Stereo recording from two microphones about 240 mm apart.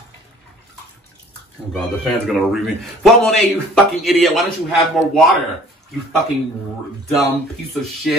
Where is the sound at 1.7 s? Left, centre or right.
Centre.